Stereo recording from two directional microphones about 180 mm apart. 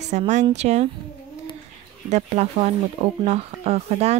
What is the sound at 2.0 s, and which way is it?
Speech, 40° right (ahead or behind).